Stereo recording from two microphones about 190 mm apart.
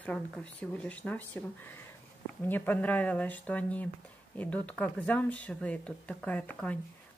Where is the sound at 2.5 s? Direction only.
10° left (ahead or behind).